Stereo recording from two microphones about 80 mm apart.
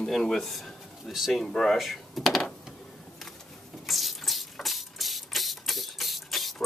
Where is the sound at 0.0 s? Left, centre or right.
Centre.